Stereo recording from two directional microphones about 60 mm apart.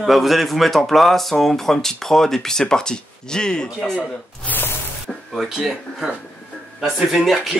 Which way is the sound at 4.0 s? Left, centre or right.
Left.